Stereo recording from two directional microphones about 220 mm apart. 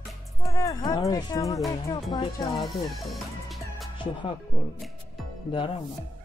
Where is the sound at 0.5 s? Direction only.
15° left (ahead or behind).